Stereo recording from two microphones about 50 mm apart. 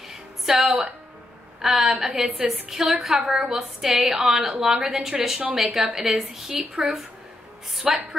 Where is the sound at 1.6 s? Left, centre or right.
Centre.